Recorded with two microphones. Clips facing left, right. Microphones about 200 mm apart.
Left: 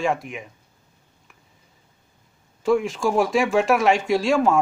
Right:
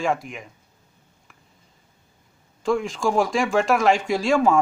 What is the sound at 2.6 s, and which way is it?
Speech, 5° left (ahead or behind).